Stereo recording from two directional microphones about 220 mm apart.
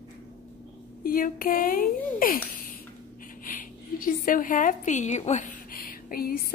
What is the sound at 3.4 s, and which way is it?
Speech, 40° left (ahead or behind).